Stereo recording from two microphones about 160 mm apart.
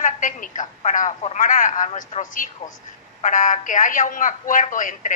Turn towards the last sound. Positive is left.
turn(degrees=55)  # may be behind; listen again after turning